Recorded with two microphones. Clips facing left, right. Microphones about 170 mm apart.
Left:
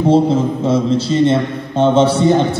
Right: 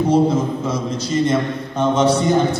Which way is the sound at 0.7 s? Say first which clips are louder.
Left 8 dB; 30° left (ahead or behind).